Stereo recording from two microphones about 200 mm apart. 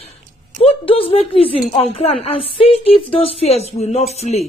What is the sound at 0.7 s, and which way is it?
A woman's voice, 25° left (ahead or behind).